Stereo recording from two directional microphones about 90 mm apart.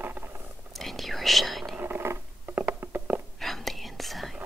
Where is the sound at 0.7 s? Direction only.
Centre (ahead or behind).